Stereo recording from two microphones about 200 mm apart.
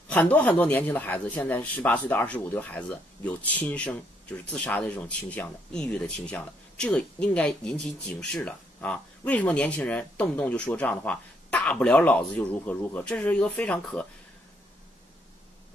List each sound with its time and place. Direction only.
0.1 s a man's voice: 5° left (ahead or behind)